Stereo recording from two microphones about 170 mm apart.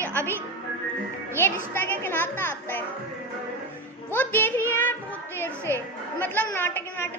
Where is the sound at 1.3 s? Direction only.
15° left (ahead or behind).